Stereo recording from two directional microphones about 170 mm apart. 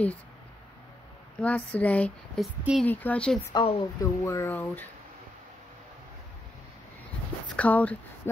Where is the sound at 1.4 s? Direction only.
10° left (ahead or behind).